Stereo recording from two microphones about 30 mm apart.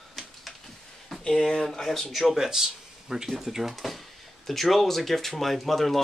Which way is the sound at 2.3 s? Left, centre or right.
Centre.